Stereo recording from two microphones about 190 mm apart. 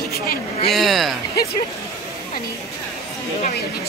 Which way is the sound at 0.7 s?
Centre (ahead or behind).